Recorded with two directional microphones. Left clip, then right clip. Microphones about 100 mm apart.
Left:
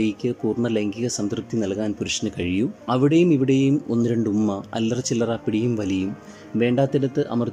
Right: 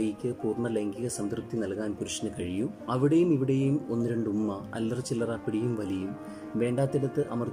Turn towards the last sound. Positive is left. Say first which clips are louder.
# left 7 dB
turn(degrees=15)  # may be behind; listen again after turning